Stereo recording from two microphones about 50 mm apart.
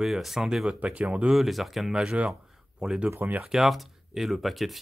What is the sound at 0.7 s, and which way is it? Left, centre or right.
Speech, right.